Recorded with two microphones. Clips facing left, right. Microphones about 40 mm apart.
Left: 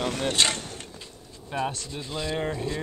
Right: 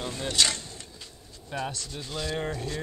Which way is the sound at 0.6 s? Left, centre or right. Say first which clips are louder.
Left 5 dB; left.